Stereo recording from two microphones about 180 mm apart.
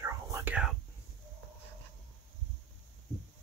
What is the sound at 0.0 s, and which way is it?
Whispering, 15° right (ahead or behind).